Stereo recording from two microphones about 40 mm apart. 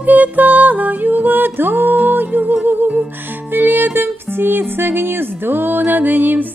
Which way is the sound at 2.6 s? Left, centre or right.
Right.